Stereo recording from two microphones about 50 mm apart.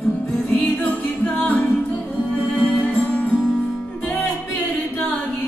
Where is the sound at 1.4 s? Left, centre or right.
Left.